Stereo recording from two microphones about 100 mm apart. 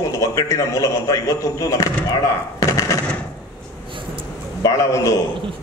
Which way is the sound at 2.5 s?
30° left (ahead or behind).